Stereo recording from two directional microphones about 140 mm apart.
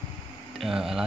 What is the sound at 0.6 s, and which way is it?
Speech, 5° right (ahead or behind).